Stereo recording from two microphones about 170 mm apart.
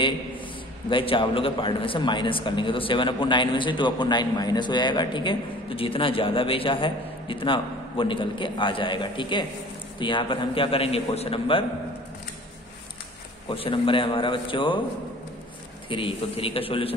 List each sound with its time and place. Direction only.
0.8 s a man's voice: 30° left (ahead or behind)
13.5 s a man's voice: 30° left (ahead or behind)
15.9 s a man's voice: 30° left (ahead or behind)